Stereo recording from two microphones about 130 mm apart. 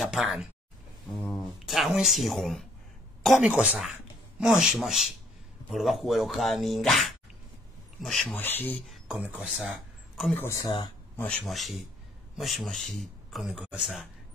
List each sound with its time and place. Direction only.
0.0 s a man's voice: centre (ahead or behind)
8.4 s speech: 15° left (ahead or behind)
8.8 s a sound: centre (ahead or behind)
9.1 s speech: 10° right (ahead or behind)
9.5 s a sound: centre (ahead or behind)
10.3 s speech: 20° left (ahead or behind)
10.6 s speech: 40° left (ahead or behind)
11.1 s a man's voice: 10° left (ahead or behind)